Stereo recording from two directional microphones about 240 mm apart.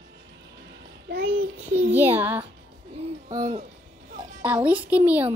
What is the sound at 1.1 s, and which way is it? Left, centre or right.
Child singing, right.